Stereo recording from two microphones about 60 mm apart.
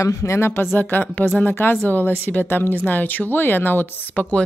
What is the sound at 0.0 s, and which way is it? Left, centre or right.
Speech, left.